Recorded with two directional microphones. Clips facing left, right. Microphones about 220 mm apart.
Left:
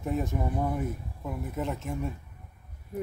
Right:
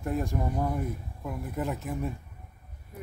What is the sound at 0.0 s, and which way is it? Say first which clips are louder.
Speech: even; centre (ahead or behind).